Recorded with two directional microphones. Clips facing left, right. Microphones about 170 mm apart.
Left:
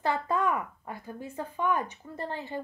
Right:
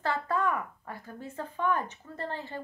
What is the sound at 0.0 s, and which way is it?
Speech, 15° left (ahead or behind).